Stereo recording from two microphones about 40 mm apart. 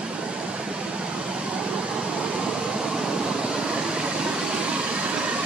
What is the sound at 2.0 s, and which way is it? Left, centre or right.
Vehicle, right.